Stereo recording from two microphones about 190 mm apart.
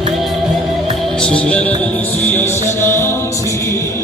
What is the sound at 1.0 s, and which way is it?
Music, 5° left (ahead or behind).